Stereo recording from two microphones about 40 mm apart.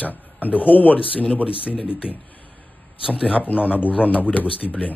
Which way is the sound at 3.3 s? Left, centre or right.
Left.